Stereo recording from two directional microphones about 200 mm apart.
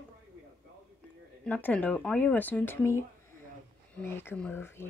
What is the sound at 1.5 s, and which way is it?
Speech, 5° left (ahead or behind).